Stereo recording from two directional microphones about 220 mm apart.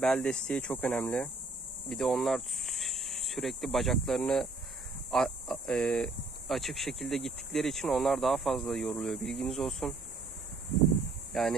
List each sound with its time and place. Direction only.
0.0 s speech: 5° left (ahead or behind)
11.3 s speech: centre (ahead or behind)